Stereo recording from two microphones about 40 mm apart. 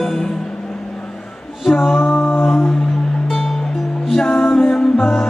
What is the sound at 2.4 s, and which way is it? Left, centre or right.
Music, centre.